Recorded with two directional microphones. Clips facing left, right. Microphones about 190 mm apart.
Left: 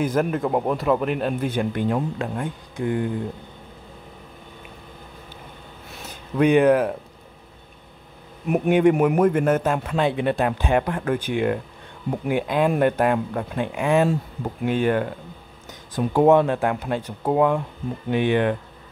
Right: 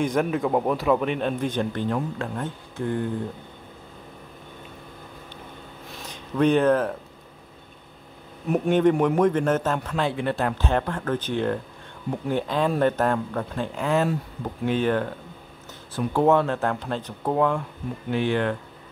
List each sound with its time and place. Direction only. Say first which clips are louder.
0.0 s speech: left 1 dB; centre (ahead or behind)
6.0 s speech: left 2 dB; 10° left (ahead or behind)
8.5 s speech: left 2 dB; 10° left (ahead or behind)